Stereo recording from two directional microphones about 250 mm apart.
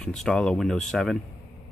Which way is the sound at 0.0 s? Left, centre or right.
Centre.